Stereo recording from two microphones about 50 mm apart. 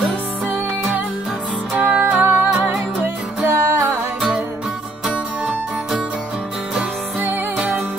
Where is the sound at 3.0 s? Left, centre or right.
Right.